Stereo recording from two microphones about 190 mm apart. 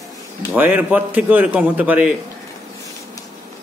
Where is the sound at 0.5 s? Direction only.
10° right (ahead or behind).